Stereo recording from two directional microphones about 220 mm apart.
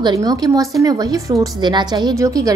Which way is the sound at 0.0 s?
15° right (ahead or behind).